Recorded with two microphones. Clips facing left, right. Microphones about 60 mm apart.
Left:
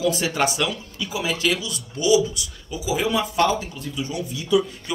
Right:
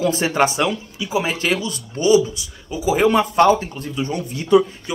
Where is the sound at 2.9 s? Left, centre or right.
Right.